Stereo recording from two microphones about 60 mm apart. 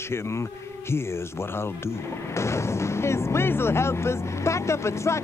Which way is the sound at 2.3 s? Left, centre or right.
Left.